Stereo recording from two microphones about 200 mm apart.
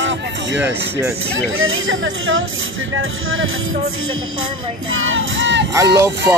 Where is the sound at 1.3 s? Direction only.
90° right.